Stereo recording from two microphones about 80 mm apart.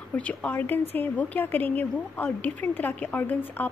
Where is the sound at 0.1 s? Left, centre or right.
Centre.